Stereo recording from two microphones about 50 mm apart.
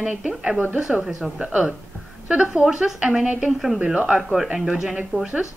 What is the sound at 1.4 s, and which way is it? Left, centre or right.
Speech, right.